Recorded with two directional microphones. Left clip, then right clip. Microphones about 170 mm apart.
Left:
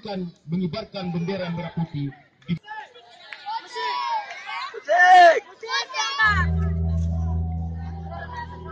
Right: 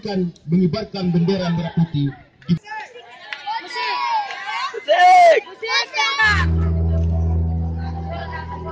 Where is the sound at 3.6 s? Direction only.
50° right (ahead or behind).